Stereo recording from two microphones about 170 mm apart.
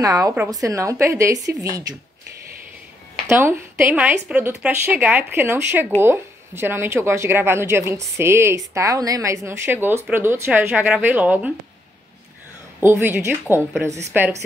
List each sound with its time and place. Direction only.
0.0 s a woman's voice: 20° right (ahead or behind)
3.3 s a woman's voice: 15° right (ahead or behind)
12.8 s a woman's voice: 15° right (ahead or behind)